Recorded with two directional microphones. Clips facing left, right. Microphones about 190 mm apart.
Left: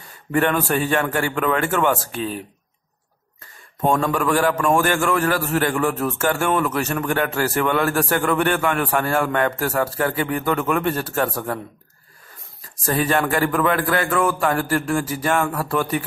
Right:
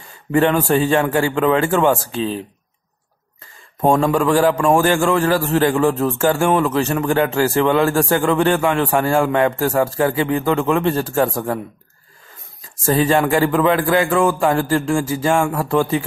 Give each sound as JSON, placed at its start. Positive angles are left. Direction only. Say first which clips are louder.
{"t": 0.3, "sound": "a man's voice", "louder": "right 4 dB", "side_deg": -25}
{"t": 3.8, "sound": "a man's voice", "louder": "right 4 dB", "side_deg": -25}
{"t": 7.2, "sound": "a man's voice", "louder": "right 6 dB", "side_deg": -20}
{"t": 12.8, "sound": "a man's voice", "louder": "right 5 dB", "side_deg": -25}